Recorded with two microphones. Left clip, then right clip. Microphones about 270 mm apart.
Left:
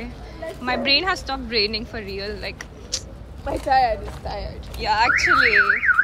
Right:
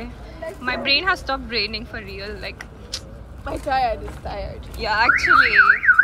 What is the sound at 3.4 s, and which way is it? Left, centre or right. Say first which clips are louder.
Speech: left 3 dB; right.